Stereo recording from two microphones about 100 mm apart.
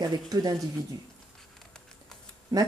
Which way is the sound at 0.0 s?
40° right (ahead or behind).